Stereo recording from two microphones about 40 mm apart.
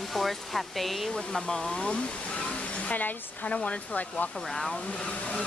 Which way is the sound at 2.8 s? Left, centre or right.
Left.